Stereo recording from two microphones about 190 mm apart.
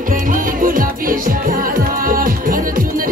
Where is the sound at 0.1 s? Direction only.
45° right (ahead or behind).